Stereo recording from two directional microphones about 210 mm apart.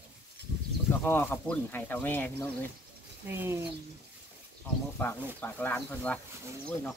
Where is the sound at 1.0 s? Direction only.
10° left (ahead or behind).